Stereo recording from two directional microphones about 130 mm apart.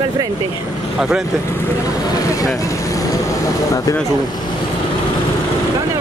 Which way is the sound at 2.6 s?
25° left (ahead or behind).